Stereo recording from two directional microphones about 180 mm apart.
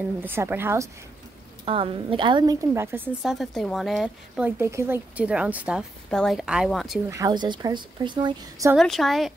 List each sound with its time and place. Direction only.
0.2 s a woman's voice: 10° right (ahead or behind)
1.7 s a woman's voice: 30° right (ahead or behind); by 3.0 s 15° right (ahead or behind)
3.2 s speech: centre (ahead or behind)
7.1 s a woman's voice: 20° right (ahead or behind)
8.7 s speech: centre (ahead or behind)